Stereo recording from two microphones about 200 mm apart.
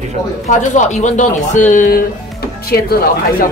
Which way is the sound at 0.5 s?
35° left (ahead or behind).